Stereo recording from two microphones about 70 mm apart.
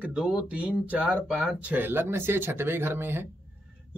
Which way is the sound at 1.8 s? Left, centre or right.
Right.